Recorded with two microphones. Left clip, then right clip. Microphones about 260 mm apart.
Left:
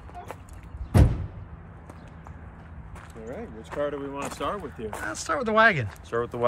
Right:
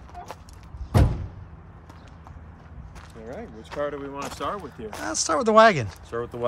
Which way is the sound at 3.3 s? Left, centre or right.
Centre.